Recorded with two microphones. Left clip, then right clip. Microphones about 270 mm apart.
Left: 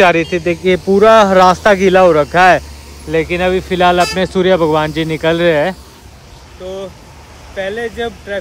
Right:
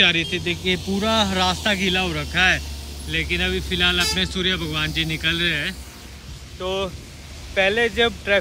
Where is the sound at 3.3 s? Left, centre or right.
Left.